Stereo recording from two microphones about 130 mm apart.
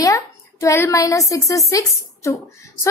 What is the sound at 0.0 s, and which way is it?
Speech, 25° left (ahead or behind).